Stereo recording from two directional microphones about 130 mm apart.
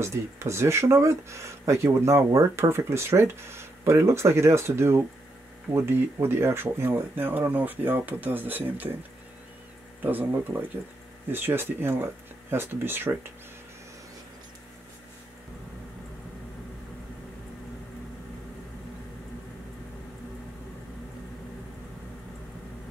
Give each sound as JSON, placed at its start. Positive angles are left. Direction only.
{"t": 0.0, "sound": "speech", "side_deg": -20}
{"t": 10.0, "sound": "speech", "side_deg": -15}